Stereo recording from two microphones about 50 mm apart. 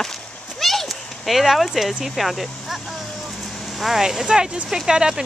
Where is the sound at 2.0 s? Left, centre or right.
Centre.